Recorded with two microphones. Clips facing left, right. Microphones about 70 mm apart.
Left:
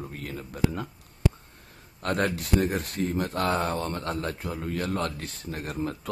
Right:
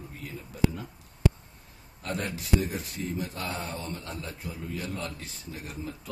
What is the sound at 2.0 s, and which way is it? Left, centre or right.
Speech, left.